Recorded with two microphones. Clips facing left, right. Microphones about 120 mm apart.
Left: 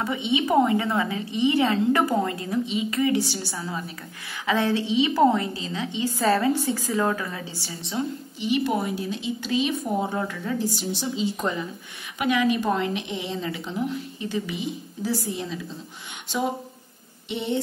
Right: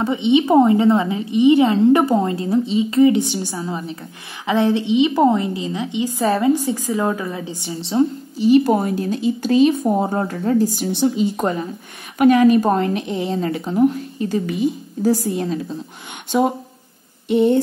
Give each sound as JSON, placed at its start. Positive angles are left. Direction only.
{"t": 0.0, "sound": "a woman's voice", "side_deg": -25}
{"t": 7.7, "sound": "a woman's voice", "side_deg": -35}
{"t": 17.3, "sound": "a woman's voice", "side_deg": -45}